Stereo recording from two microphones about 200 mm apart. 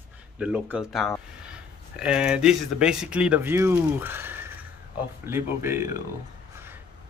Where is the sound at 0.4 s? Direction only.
5° right (ahead or behind).